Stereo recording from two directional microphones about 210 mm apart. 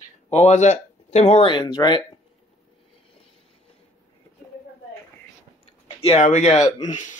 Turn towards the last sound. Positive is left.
turn(degrees=35)  # may be behind; listen again after turning